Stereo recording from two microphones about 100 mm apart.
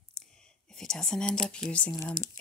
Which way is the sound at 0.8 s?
5° left (ahead or behind).